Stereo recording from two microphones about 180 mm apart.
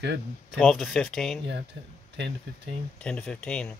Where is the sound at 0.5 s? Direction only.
5° left (ahead or behind).